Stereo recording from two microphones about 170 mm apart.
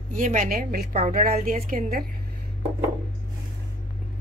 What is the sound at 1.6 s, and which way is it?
Speech, 55° right (ahead or behind).